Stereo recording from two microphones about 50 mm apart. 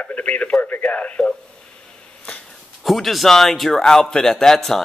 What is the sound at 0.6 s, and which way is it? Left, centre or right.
Speech, left.